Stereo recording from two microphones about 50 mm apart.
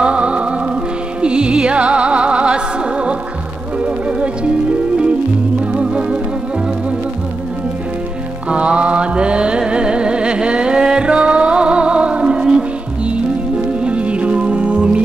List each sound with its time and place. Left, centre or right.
0.0 s music: right
5.7 s music: centre
8.5 s mantra: right
13.7 s music: right